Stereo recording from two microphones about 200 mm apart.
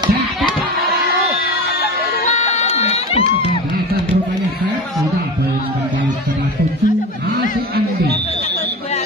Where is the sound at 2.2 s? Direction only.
35° left (ahead or behind).